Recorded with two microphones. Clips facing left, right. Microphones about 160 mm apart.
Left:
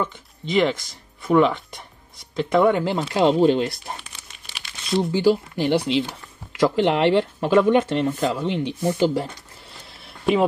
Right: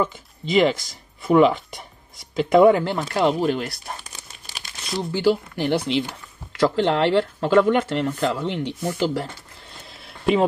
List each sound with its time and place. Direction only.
0.0 s speech: 5° right (ahead or behind)
2.8 s speech: 15° left (ahead or behind)
4.0 s crumpling: 40° right (ahead or behind)
4.9 s speech: 15° left (ahead or behind)
10.0 s a sound: centre (ahead or behind)